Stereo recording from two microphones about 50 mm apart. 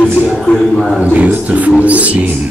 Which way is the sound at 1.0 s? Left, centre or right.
Right.